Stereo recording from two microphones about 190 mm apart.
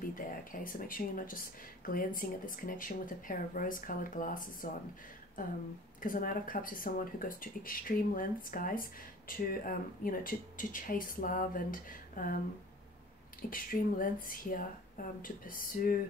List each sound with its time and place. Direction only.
0.1 s speech: 45° left (ahead or behind)
6.0 s speech: 45° left (ahead or behind)
13.4 s speech: 50° left (ahead or behind)